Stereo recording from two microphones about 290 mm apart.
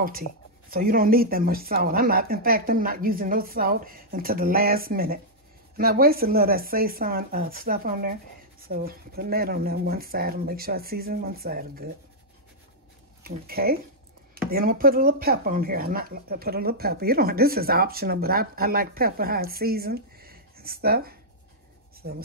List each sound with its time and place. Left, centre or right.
0.7 s speech: right
13.2 s speech: right